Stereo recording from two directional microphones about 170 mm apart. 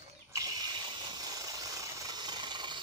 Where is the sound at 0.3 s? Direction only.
20° right (ahead or behind).